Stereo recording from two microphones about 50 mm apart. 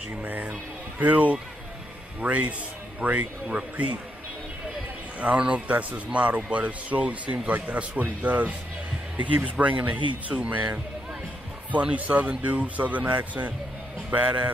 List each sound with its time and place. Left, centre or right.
0.1 s a man's voice: right
5.2 s a man's voice: right
11.8 s a man's voice: right